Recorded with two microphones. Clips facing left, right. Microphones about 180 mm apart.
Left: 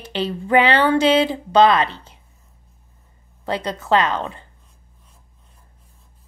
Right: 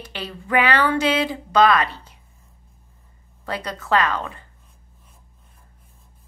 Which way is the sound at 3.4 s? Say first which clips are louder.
Left 5 dB; 25° left (ahead or behind).